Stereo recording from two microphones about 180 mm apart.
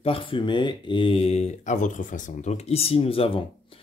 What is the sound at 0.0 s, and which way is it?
Speech, 30° left (ahead or behind).